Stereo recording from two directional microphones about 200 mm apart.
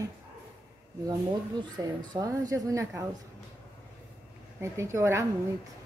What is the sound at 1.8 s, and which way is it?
A woman's voice, 15° right (ahead or behind).